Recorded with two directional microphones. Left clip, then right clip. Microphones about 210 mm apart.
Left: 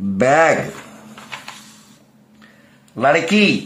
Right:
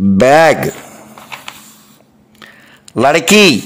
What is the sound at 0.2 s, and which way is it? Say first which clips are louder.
Speech: right 6 dB; 40° right (ahead or behind).